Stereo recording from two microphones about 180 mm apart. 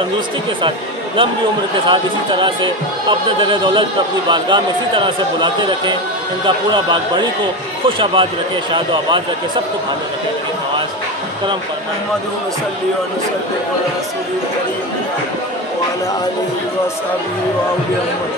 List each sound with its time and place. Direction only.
0.6 s speech: 25° right (ahead or behind)